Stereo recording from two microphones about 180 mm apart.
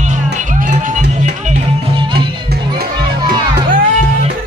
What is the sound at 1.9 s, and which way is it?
Music, 25° right (ahead or behind).